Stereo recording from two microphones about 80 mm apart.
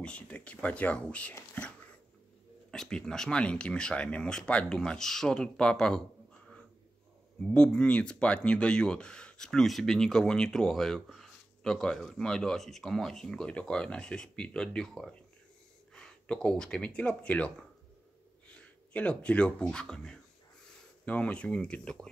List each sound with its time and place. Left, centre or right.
0.0 s speech: centre
1.5 s whispering: centre
2.7 s speech: centre
7.4 s speech: centre